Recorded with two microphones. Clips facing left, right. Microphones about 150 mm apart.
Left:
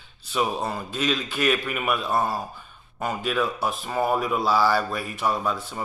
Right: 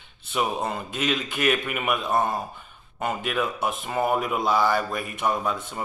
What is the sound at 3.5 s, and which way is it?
Speech, 20° right (ahead or behind).